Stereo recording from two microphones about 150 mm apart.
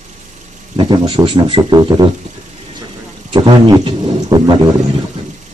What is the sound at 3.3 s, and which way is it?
A man's voice, 30° right (ahead or behind).